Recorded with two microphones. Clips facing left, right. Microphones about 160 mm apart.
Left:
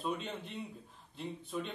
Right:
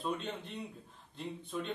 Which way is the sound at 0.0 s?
Centre (ahead or behind).